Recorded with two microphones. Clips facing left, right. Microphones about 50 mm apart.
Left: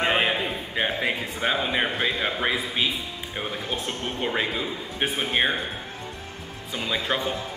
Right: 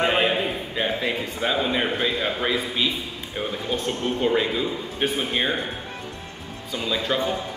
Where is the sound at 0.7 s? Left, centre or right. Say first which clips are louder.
Even; centre.